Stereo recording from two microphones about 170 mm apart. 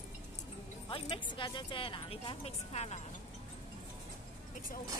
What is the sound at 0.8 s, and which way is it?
Speech, 30° left (ahead or behind).